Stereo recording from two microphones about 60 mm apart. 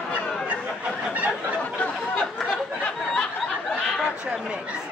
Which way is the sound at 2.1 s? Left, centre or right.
Centre.